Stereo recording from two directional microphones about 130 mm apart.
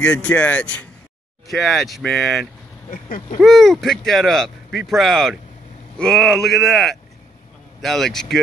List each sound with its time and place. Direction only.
0.0 s speech: 10° left (ahead or behind)
1.5 s speech: centre (ahead or behind)
2.9 s duck: 90° left
3.3 s speech: centre (ahead or behind)